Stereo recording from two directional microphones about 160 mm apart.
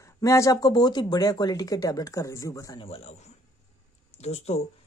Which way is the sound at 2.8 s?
40° left (ahead or behind).